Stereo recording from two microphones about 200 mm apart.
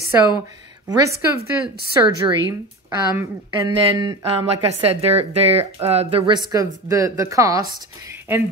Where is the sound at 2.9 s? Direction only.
20° right (ahead or behind).